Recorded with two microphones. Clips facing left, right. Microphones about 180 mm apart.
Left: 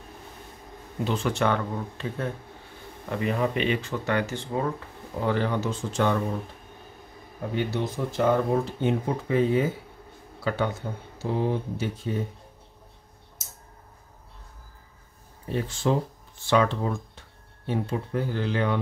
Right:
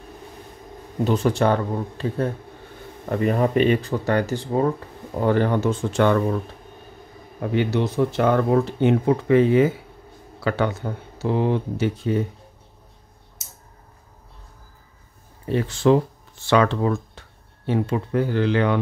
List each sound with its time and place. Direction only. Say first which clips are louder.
1.0 s speech: right 6 dB; 40° right (ahead or behind)
5.2 s speech: right 6 dB; 50° right (ahead or behind)
7.5 s speech: right 7 dB; 70° right (ahead or behind)
15.5 s speech: right 8 dB; 75° right (ahead or behind)